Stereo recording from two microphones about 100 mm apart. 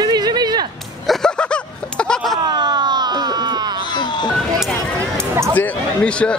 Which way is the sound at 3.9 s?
50° left (ahead or behind).